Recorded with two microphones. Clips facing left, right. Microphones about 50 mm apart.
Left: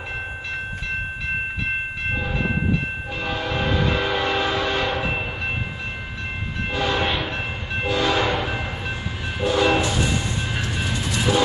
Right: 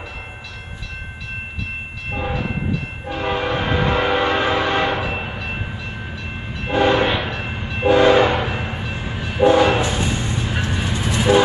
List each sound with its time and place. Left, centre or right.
3.1 s train horn: right
6.7 s train horn: right
9.4 s music: right